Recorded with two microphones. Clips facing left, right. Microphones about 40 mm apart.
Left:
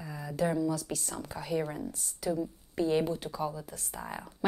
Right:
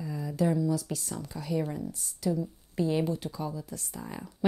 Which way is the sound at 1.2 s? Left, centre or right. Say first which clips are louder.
Right 1 dB; centre.